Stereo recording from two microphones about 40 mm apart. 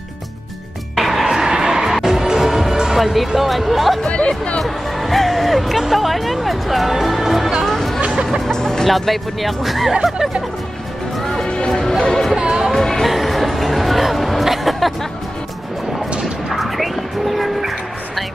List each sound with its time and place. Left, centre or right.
0.9 s music: centre
1.2 s a sound: centre
1.9 s music: centre
3.0 s speech: centre
4.0 s speech: left
4.6 s speech: centre
7.6 s music: centre
8.5 s speech: centre
8.8 s speech: centre
11.4 s music: left
12.4 s music: centre
12.7 s music: centre
13.0 s a sound: centre
16.4 s music: centre